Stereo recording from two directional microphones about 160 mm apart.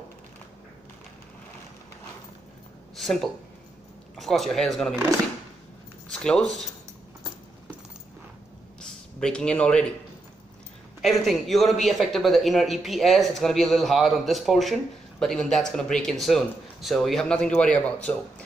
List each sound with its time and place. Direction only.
3.0 s a sound: 5° left (ahead or behind)
4.2 s speech: centre (ahead or behind)
6.0 s speech: 5° left (ahead or behind)
8.8 s speech: 5° left (ahead or behind)
11.0 s speech: centre (ahead or behind)